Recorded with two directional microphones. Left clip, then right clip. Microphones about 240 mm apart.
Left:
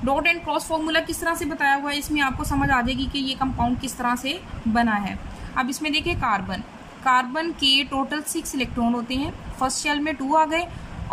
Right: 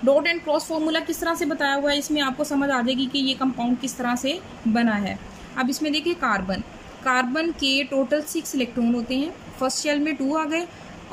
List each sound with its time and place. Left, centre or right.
0.0 s a woman's voice: centre